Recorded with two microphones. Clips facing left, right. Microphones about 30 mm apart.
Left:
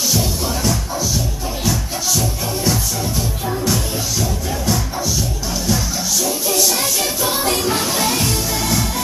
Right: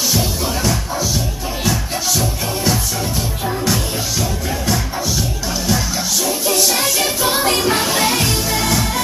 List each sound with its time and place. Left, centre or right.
3.6 s music: right
6.2 s music: right